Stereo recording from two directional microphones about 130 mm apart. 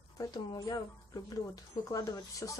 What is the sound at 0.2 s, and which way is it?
Speech, 30° left (ahead or behind).